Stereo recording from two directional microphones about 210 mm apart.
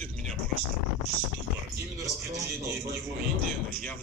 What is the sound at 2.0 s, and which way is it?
Speech, 15° right (ahead or behind).